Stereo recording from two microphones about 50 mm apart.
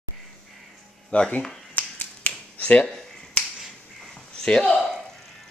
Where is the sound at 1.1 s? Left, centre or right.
Left.